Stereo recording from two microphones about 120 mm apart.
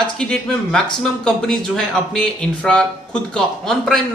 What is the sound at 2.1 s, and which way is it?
A man's voice, 5° left (ahead or behind).